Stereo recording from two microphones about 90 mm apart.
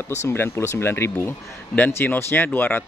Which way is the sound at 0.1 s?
30° left (ahead or behind).